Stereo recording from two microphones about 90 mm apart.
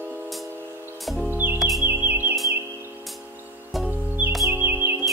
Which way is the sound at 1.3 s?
20° right (ahead or behind).